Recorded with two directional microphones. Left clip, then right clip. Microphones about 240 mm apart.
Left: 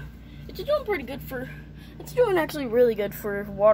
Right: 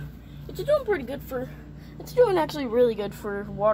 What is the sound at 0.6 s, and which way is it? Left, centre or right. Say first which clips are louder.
Speech: right 2 dB; centre.